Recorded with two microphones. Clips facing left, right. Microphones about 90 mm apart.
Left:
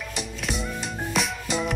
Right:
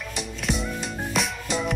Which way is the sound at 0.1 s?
Centre (ahead or behind).